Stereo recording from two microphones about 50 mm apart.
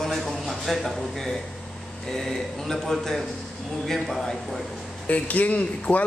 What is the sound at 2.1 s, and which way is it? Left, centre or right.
A man's voice, centre.